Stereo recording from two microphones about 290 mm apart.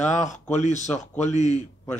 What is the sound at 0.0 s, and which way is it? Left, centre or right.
Speech, left.